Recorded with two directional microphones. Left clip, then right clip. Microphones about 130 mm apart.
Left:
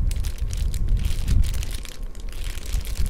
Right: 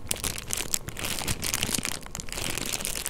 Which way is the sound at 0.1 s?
55° right (ahead or behind).